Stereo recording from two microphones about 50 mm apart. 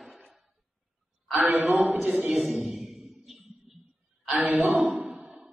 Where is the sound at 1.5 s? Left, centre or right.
Right.